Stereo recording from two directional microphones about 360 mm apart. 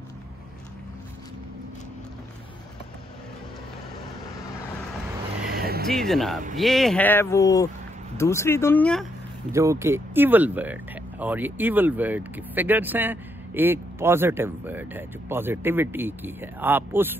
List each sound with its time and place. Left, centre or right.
5.5 s vehicle: right
5.9 s speech: centre
9.5 s speech: centre